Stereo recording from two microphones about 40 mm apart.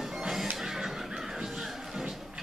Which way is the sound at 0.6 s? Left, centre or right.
Centre.